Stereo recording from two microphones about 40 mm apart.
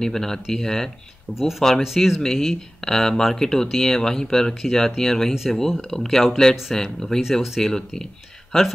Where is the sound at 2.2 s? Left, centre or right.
Centre.